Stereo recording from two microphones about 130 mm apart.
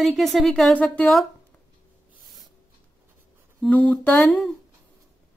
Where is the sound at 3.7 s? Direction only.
10° left (ahead or behind).